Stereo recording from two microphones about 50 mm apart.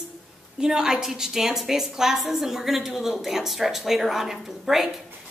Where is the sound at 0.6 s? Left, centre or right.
Centre.